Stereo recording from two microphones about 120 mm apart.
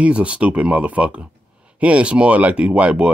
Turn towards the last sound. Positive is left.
turn(degrees=-10)  # may be behind; listen again after turning